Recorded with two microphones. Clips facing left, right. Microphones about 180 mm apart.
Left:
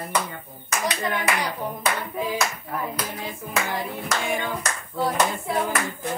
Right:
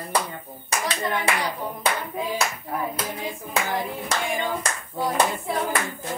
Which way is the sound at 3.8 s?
25° right (ahead or behind).